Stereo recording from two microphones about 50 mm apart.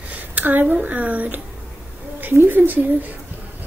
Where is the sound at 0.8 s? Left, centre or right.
Right.